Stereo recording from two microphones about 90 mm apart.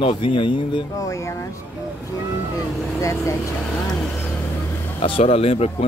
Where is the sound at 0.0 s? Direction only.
70° left (ahead or behind).